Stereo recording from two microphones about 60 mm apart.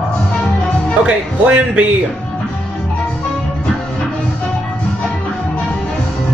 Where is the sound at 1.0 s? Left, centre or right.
Right.